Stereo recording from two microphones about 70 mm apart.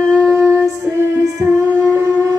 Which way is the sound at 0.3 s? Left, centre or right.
Right.